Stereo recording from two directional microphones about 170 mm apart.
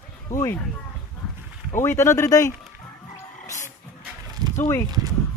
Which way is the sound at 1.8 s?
15° left (ahead or behind).